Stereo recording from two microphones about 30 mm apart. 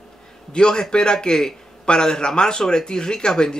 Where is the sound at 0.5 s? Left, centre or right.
Left.